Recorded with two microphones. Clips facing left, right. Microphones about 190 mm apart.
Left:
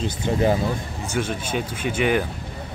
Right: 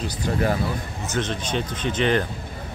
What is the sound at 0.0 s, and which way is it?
Speech, 25° left (ahead or behind).